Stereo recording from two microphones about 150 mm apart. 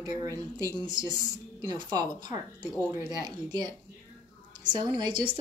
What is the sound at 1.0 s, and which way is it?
Speech, 25° left (ahead or behind).